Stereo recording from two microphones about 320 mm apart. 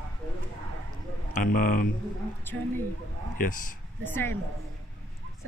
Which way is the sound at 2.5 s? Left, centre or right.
Centre.